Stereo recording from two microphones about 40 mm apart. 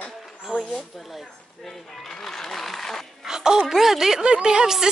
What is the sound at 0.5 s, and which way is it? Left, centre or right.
Speech, right.